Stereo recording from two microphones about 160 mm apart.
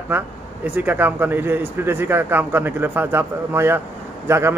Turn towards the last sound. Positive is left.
turn(degrees=-15)  # may be behind; listen again after turning